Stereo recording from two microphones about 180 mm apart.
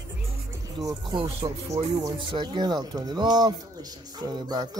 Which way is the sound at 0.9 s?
25° right (ahead or behind).